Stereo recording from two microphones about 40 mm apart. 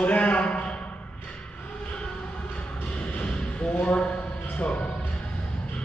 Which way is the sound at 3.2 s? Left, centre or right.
Left.